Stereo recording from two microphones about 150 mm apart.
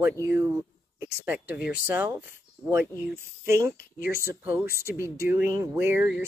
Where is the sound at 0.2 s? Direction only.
20° right (ahead or behind).